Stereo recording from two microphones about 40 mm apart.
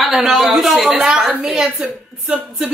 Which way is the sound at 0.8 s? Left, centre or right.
Centre.